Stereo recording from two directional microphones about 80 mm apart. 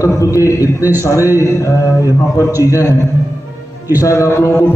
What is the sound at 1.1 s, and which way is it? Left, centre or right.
A man's voice, left.